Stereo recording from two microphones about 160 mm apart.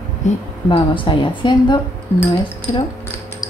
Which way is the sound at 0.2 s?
50° left (ahead or behind).